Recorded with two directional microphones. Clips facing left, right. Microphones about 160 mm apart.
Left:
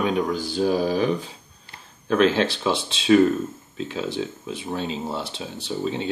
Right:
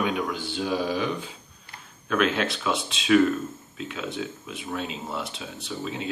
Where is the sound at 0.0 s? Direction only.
35° left (ahead or behind).